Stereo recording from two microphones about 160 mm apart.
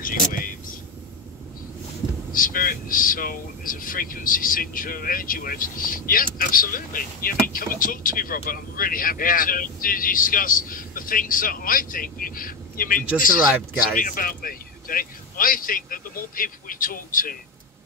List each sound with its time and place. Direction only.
0.0 s vehicle: 60° left (ahead or behind)
2.3 s speech: 60° left (ahead or behind)